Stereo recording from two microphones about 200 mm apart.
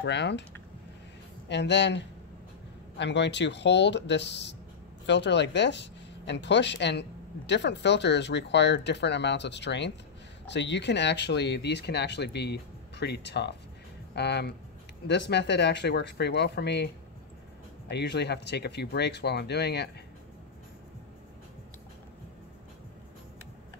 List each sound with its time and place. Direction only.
0.0 s speech: 60° left (ahead or behind)
1.5 s speech: 60° left (ahead or behind)